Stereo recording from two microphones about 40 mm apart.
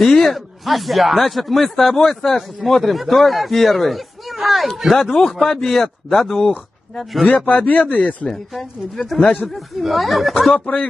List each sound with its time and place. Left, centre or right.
0.0 s speech: centre
5.1 s a man's voice: centre
5.6 s speech: centre
7.4 s speech: left
8.0 s speech: left
8.3 s speech: centre
10.5 s speech: left